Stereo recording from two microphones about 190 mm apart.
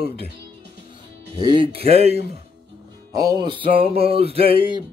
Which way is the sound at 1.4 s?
25° right (ahead or behind).